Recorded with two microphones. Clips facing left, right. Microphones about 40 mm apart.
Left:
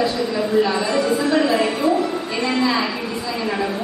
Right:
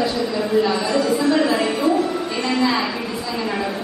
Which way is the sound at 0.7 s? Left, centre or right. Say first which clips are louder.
Even; left.